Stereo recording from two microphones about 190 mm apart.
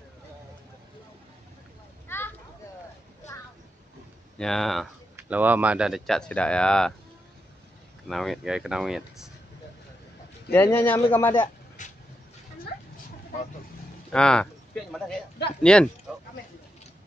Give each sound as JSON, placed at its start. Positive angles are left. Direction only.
{"t": 2.0, "sound": "a sound", "side_deg": 10}
{"t": 4.4, "sound": "speech", "side_deg": 0}
{"t": 5.1, "sound": "speech", "side_deg": -10}
{"t": 8.1, "sound": "speech", "side_deg": 0}
{"t": 10.5, "sound": "a man's voice", "side_deg": 10}
{"t": 11.8, "sound": "vehicle", "side_deg": 40}
{"t": 14.1, "sound": "a sound", "side_deg": 5}
{"t": 15.6, "sound": "speech", "side_deg": 5}